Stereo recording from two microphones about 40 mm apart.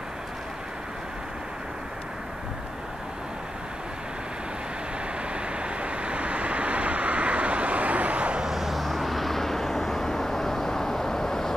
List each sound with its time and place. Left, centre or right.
5.3 s vehicle: right
8.4 s vehicle: centre